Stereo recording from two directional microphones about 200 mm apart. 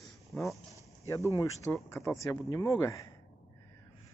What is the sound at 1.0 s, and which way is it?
Speech, 15° left (ahead or behind).